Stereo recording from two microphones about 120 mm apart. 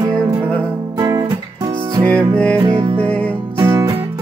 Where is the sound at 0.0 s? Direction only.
35° right (ahead or behind).